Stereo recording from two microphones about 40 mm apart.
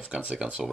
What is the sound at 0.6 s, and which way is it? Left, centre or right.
Speech, centre.